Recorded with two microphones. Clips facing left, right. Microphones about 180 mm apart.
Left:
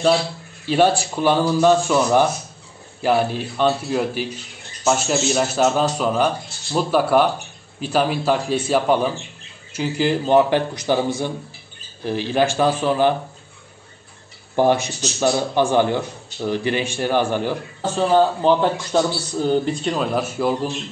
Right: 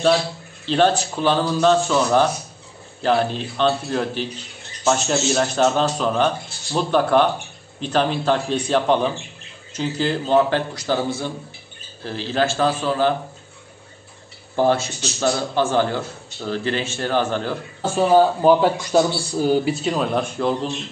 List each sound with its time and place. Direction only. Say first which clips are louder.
0.7 s speech: left 1 dB; 10° left (ahead or behind)
14.5 s speech: left 1 dB; 15° left (ahead or behind)
17.8 s a man's voice: right 1 dB; 10° right (ahead or behind); by 20.7 s 5° left (ahead or behind)